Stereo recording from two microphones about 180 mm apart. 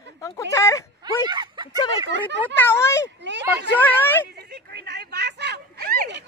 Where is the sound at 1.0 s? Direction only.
25° right (ahead or behind).